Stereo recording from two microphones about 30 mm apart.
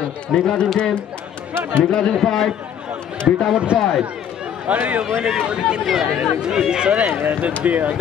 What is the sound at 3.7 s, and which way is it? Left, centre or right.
Speech, right.